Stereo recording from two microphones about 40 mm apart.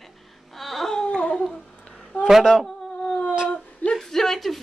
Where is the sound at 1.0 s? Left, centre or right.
Centre.